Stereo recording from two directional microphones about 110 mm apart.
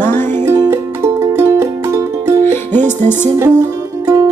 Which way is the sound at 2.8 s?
20° left (ahead or behind).